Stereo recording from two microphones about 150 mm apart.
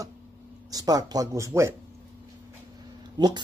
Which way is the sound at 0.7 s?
25° right (ahead or behind).